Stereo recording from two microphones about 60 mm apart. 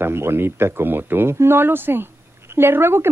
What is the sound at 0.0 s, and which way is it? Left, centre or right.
Speech, right.